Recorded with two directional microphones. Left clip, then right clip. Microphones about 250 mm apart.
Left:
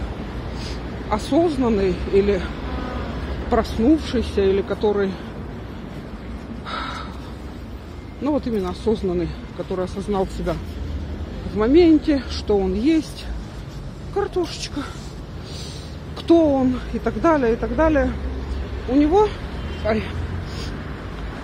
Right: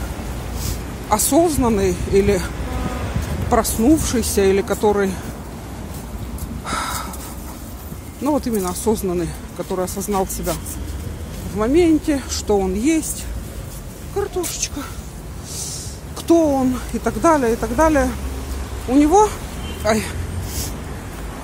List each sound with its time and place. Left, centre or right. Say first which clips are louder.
0.6 s speech: right 1 dB; centre
3.4 s speech: right 2 dB; centre
6.6 s a sound: right 5 dB; centre
8.2 s speech: right 2 dB; centre
11.5 s speech: left 1 dB; centre
14.1 s speech: even; centre
16.3 s speech: right 1 dB; centre